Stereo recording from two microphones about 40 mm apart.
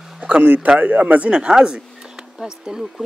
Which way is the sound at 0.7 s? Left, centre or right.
Right.